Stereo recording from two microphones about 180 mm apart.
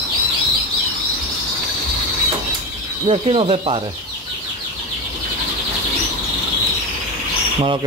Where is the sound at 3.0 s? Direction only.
30° right (ahead or behind).